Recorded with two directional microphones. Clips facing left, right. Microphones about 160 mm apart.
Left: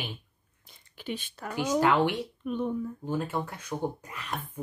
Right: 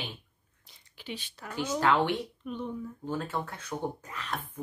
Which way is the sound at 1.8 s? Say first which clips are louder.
Left 1 dB; 10° left (ahead or behind).